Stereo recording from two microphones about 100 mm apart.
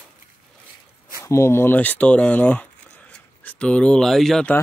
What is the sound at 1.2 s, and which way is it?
Speech, 30° left (ahead or behind).